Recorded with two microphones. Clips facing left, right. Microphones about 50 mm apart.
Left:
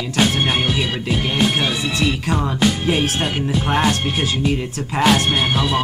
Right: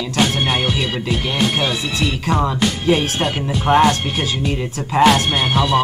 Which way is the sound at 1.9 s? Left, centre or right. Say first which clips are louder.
Right 3 dB; centre.